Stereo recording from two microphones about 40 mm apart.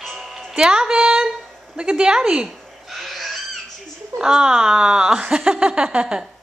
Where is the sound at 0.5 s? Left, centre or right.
Centre.